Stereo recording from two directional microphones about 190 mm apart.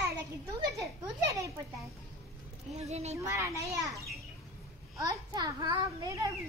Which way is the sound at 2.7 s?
35° right (ahead or behind).